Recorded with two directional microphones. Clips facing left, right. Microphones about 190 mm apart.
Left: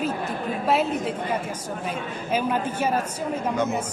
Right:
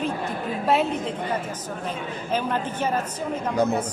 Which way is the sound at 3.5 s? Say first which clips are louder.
Right 4 dB; 35° right (ahead or behind).